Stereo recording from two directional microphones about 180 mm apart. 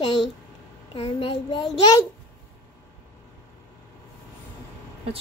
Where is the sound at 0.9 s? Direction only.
30° left (ahead or behind).